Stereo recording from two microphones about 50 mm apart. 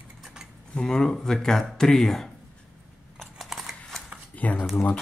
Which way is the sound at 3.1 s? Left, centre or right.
Centre.